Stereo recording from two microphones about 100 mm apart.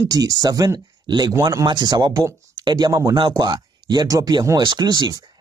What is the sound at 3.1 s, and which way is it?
Speech, 45° right (ahead or behind).